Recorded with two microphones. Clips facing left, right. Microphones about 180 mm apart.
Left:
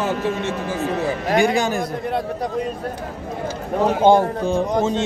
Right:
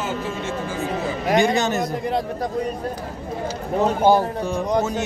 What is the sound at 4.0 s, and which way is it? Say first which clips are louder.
Speech: left 4 dB; 25° left (ahead or behind).